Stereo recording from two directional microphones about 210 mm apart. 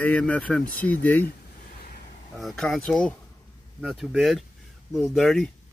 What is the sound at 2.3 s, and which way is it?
Speech, centre (ahead or behind).